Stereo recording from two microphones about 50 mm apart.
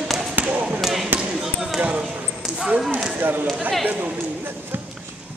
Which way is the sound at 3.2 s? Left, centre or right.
Right.